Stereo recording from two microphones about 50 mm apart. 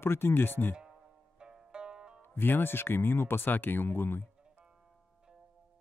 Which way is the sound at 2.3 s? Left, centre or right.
Left.